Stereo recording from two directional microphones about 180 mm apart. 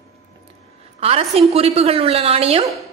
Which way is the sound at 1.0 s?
35° right (ahead or behind).